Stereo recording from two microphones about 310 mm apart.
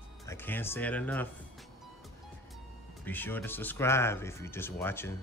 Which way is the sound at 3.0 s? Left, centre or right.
Centre.